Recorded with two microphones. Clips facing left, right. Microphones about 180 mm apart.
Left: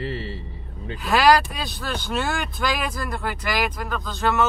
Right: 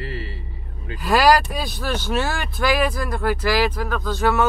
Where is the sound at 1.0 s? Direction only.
5° right (ahead or behind).